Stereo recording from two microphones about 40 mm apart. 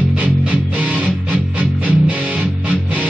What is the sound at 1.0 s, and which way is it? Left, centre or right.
Music, right.